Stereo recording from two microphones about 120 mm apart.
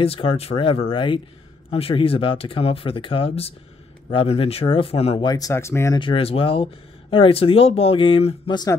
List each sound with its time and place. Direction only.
0.0 s speech: 50° left (ahead or behind)
5.2 s speech: 35° left (ahead or behind)
5.5 s speech: 20° left (ahead or behind)
5.9 s speech: 45° left (ahead or behind)
8.5 s speech: 35° left (ahead or behind)